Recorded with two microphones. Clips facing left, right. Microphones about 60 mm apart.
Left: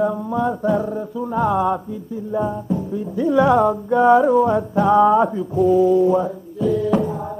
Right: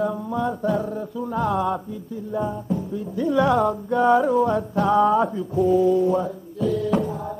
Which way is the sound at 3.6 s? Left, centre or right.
Centre.